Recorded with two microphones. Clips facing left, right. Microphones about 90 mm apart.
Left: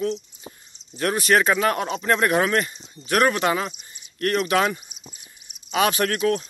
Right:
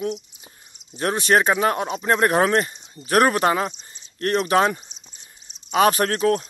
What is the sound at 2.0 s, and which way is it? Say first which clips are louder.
Speech: right 2 dB; 35° right (ahead or behind).